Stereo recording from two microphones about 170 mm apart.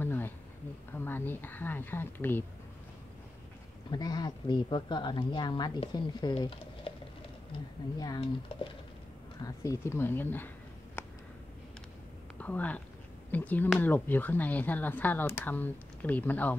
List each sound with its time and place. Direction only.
0.0 s a sound: 10° left (ahead or behind)
0.9 s speech: 10° left (ahead or behind)
3.9 s speech: 25° left (ahead or behind)
8.0 s speech: 25° left (ahead or behind)
11.0 s a sound: 15° left (ahead or behind)
12.4 s speech: 10° left (ahead or behind)